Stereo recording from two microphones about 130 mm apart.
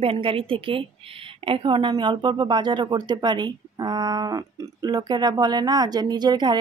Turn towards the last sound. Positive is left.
turn(degrees=-35)  # may be behind; listen again after turning